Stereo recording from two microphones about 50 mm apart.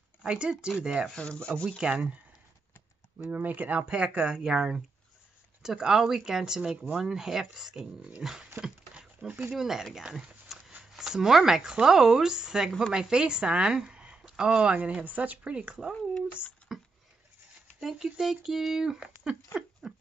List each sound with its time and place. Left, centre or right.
0.2 s speech: centre
1.1 s speech: centre
1.5 s speech: centre
1.8 s speech: centre
3.3 s speech: right
4.4 s speech: centre
8.5 s a sound: centre
9.5 s speech: centre
10.0 s a sound: centre
11.7 s speech: centre
16.7 s a sound: centre
17.7 s speech: centre